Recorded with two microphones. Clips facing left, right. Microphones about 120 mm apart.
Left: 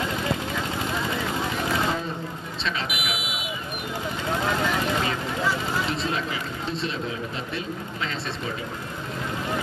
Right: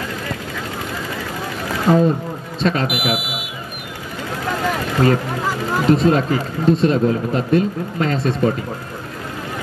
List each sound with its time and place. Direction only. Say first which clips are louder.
1.9 s speech: right 13 dB; 45° right (ahead or behind)
3.2 s speech: right 5 dB; centre (ahead or behind)
5.0 s speech: right 9 dB; 45° right (ahead or behind)